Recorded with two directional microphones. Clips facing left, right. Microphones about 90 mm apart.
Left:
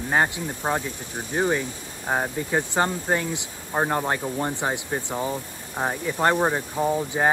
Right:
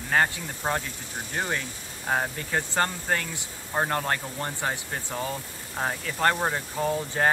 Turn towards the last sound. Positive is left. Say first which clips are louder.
# left 3 dB
turn(degrees=15)  # may be behind; listen again after turning